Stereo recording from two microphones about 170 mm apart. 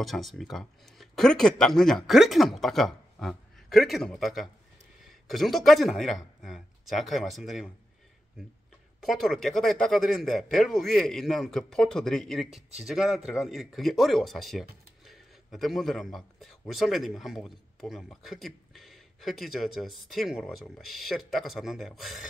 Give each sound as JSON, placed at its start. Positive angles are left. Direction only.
{"t": 0.0, "sound": "speech", "side_deg": 0}
{"t": 9.0, "sound": "speech", "side_deg": 0}